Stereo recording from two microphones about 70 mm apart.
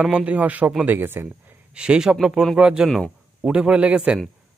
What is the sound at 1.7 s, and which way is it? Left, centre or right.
Speech, centre.